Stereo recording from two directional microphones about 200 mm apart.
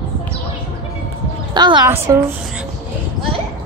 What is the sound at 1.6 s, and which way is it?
Speech, 20° right (ahead or behind).